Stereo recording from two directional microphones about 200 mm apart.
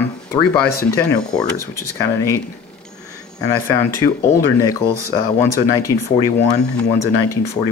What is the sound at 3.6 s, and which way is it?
Speech, 15° left (ahead or behind).